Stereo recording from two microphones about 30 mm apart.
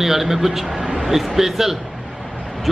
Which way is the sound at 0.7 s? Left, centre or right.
Right.